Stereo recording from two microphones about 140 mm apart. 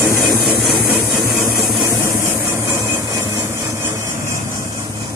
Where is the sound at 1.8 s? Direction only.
15° right (ahead or behind).